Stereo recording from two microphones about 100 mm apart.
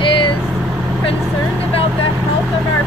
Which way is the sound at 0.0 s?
55° left (ahead or behind).